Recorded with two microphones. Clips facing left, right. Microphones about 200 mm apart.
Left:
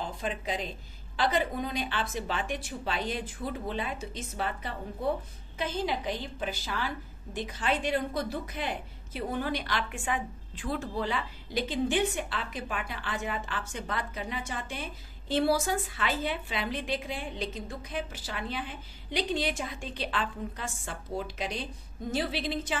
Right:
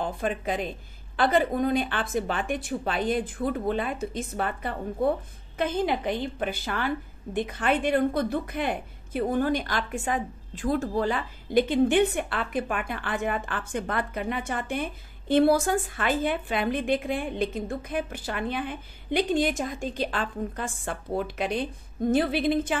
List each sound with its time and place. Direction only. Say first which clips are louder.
0.0 s a woman's voice: right 6 dB; 55° right (ahead or behind)